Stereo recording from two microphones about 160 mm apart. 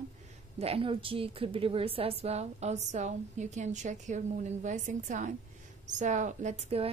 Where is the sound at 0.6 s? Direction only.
35° right (ahead or behind).